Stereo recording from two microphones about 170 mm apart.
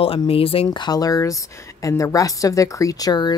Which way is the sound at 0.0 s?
35° left (ahead or behind).